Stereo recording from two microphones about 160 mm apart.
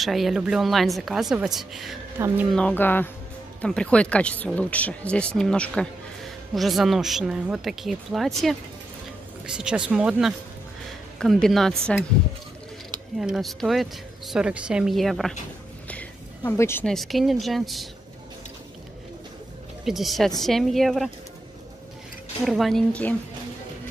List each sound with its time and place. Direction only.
0.0 s speech: centre (ahead or behind)
2.1 s speech: 15° right (ahead or behind)
2.5 s speech: 10° left (ahead or behind)
13.2 s speech: centre (ahead or behind)
15.9 s a sound: 10° left (ahead or behind)
16.8 s speech: centre (ahead or behind)
19.8 s speech: centre (ahead or behind)
22.5 s speech: centre (ahead or behind)